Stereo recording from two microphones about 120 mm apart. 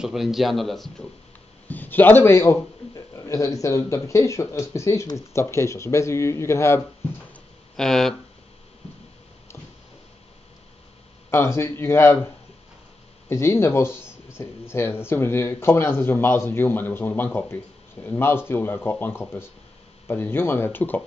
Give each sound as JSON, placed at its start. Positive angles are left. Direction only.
{"t": 0.0, "sound": "a man's voice", "side_deg": -5}
{"t": 1.7, "sound": "a man's voice", "side_deg": 15}
{"t": 7.7, "sound": "a man's voice", "side_deg": 5}
{"t": 11.2, "sound": "a man's voice", "side_deg": 20}
{"t": 13.3, "sound": "a man's voice", "side_deg": 20}